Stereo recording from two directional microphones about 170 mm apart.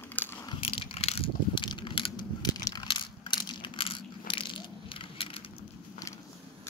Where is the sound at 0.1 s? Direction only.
10° left (ahead or behind).